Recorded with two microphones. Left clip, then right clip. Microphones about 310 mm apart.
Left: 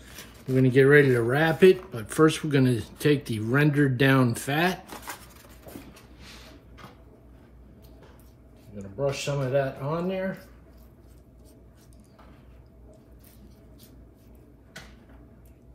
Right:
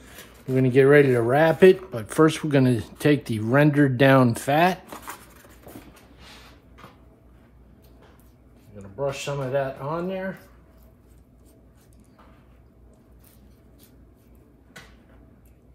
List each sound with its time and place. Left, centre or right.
0.5 s speech: centre
4.9 s a sound: centre
8.9 s speech: centre